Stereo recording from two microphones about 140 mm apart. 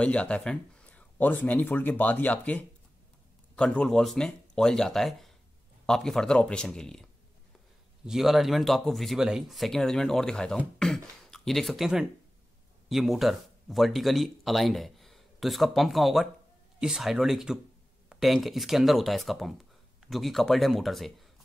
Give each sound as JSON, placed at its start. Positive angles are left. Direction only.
{"t": 0.0, "sound": "speech", "side_deg": 10}